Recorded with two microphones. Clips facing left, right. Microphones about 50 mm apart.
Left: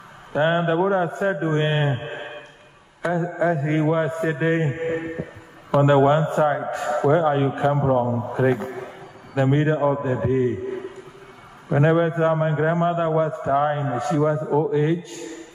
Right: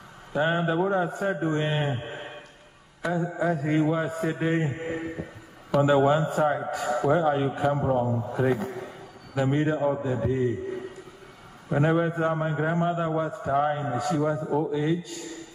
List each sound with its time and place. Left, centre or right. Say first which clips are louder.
0.3 s a man's voice: left 5 dB; left
5.8 s a man's voice: left 4 dB; left
11.7 s a man's voice: left 5 dB; left